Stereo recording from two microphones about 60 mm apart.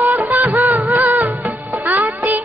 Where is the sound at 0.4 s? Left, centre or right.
Right.